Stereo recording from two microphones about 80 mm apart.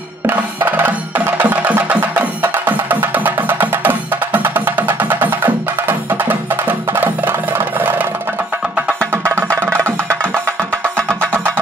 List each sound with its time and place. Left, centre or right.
0.3 s music: right
9.1 s music: right
11.3 s vehicle: right